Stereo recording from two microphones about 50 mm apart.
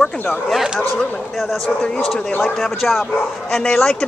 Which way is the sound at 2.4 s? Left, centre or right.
Centre.